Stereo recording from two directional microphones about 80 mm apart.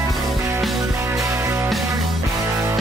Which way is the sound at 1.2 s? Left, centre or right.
Right.